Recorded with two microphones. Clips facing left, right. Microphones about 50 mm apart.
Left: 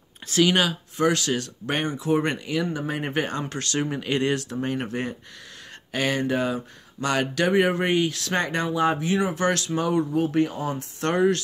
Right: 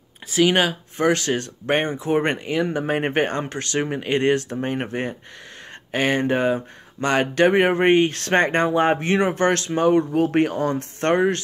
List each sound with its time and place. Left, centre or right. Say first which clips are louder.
0.3 s speech: right 2 dB; centre
0.6 s speech: right 2 dB; right
2.8 s speech: right 6 dB; right
3.5 s speech: right 3 dB; right
10.1 s speech: right 4 dB; right
11.0 s speech: right 2 dB; right